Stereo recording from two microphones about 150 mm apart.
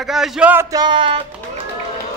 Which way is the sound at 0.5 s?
25° right (ahead or behind).